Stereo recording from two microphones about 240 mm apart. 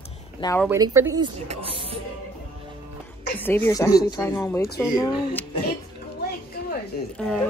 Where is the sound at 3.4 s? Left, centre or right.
Centre.